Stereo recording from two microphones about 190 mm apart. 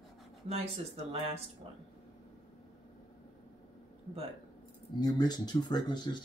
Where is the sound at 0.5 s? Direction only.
35° right (ahead or behind).